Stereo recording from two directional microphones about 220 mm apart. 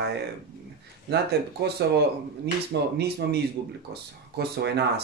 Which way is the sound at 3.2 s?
50° right (ahead or behind).